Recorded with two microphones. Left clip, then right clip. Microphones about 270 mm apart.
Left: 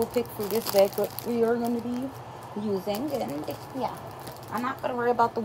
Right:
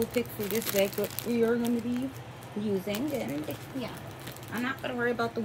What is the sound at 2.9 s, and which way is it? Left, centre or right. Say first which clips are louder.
A woman's voice: left 3 dB; centre.